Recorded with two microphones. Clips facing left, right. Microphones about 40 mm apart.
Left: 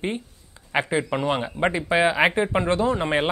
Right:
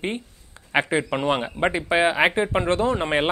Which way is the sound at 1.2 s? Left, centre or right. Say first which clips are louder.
Right 1 dB; right.